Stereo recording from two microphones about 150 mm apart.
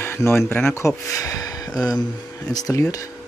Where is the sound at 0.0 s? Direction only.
15° left (ahead or behind).